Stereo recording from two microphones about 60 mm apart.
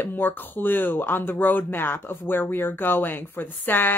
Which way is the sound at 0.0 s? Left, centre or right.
Left.